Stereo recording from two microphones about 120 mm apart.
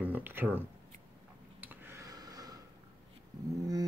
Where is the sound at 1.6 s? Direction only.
15° right (ahead or behind); by 2.6 s 30° right (ahead or behind).